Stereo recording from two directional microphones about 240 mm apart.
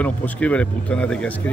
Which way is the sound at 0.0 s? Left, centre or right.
Centre.